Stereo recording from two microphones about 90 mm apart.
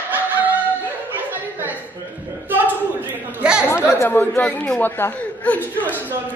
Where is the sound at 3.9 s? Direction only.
25° left (ahead or behind).